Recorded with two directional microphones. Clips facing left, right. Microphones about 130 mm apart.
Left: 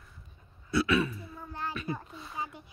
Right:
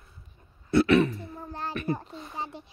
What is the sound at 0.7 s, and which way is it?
Throat clearing, 60° right (ahead or behind).